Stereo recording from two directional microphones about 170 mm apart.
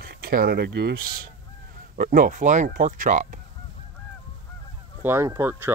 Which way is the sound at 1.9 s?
55° right (ahead or behind).